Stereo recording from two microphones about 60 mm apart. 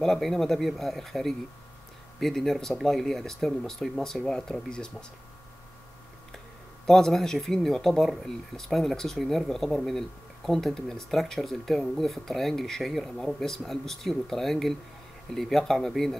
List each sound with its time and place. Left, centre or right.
0.0 s speech: centre
6.9 s speech: centre